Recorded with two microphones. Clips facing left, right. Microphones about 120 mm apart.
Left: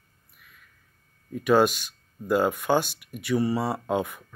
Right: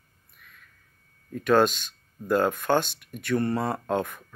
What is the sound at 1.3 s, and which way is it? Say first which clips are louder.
Speech: even; 10° left (ahead or behind).